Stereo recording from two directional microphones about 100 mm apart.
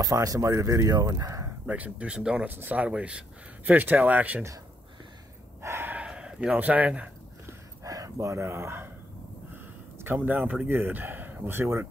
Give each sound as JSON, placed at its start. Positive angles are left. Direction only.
{"t": 0.0, "sound": "speech", "side_deg": -35}
{"t": 1.7, "sound": "speech", "side_deg": -15}
{"t": 5.6, "sound": "a sound", "side_deg": -25}
{"t": 6.0, "sound": "speech", "side_deg": -5}
{"t": 7.4, "sound": "a sound", "side_deg": -35}
{"t": 10.0, "sound": "speech", "side_deg": -20}